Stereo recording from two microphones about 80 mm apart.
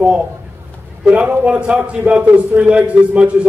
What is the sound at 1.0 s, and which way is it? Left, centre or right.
A man's voice, centre.